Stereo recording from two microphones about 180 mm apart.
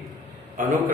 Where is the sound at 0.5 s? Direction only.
50° right (ahead or behind).